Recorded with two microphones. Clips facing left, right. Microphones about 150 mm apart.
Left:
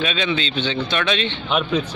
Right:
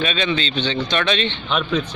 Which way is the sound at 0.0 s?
5° left (ahead or behind).